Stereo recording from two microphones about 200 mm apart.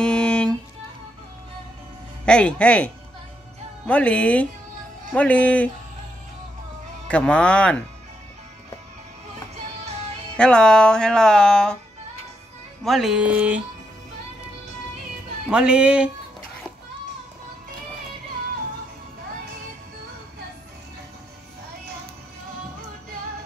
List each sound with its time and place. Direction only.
0.0 s music: 5° left (ahead or behind)
2.2 s music: 5° left (ahead or behind)
3.8 s speech: 5° left (ahead or behind)
7.1 s music: 5° left (ahead or behind)
10.3 s music: 5° left (ahead or behind)
12.8 s music: centre (ahead or behind)
15.5 s music: 5° right (ahead or behind)